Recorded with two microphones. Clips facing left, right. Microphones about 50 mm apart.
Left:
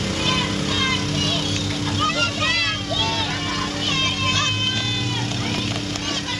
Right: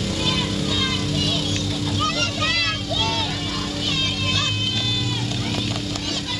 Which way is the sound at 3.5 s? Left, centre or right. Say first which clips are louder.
Left 2 dB; left.